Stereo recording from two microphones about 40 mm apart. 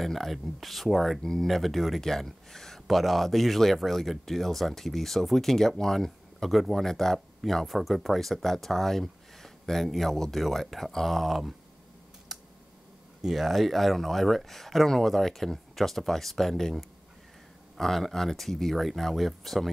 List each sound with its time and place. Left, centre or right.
0.0 s speech: centre
12.3 s computer keyboard: centre
13.2 s speech: centre